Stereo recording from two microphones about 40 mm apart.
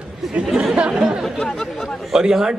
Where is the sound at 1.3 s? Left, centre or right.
Centre.